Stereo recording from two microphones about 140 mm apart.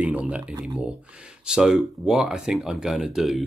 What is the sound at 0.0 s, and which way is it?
Speech, 10° right (ahead or behind).